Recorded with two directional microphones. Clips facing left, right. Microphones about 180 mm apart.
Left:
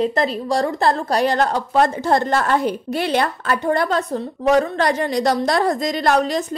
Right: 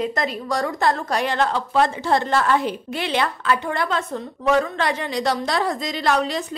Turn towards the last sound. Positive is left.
turn(degrees=45)  # may be behind; listen again after turning